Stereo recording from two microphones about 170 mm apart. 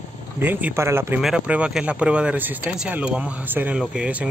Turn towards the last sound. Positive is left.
turn(degrees=-5)  # may be behind; listen again after turning